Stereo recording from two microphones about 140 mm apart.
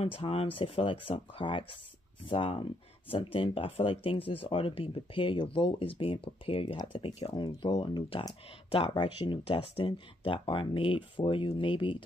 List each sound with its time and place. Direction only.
0.0 s speech: 40° left (ahead or behind)